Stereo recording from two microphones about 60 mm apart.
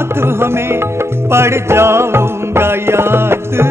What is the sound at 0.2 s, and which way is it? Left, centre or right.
Music, right.